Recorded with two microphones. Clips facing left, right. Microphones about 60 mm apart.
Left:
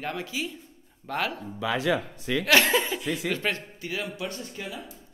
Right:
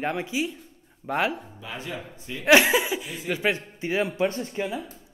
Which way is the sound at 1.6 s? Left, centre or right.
Left.